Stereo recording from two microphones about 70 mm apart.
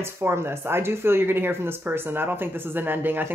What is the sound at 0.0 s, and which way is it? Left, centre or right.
Speech, right.